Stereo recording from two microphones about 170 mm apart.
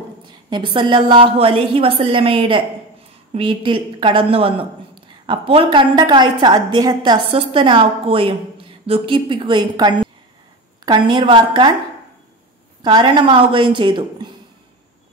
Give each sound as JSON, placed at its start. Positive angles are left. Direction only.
{"t": 0.3, "sound": "a woman's voice", "side_deg": -25}
{"t": 12.8, "sound": "a woman's voice", "side_deg": -25}